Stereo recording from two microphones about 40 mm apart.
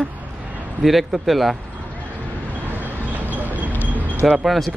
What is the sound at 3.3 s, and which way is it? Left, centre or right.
Vehicle, right.